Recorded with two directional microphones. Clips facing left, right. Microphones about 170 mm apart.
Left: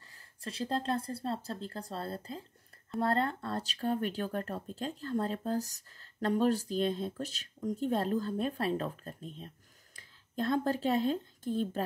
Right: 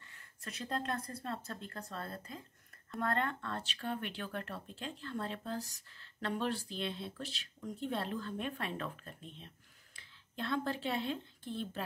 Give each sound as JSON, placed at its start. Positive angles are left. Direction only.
{"t": 0.1, "sound": "speech", "side_deg": 30}